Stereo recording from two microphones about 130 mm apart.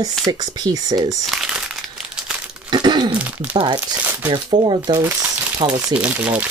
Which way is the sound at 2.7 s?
35° right (ahead or behind).